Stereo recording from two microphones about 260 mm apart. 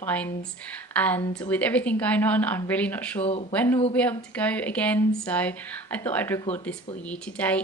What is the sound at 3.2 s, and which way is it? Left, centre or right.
Speech, left.